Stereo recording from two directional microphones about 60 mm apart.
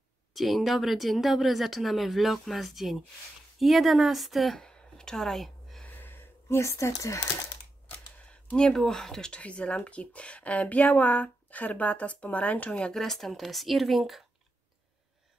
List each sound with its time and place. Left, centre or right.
0.3 s speech: centre
4.6 s a sound: centre
5.9 s a sound: left
8.5 s speech: centre
9.4 s speech: centre
12.9 s speech: centre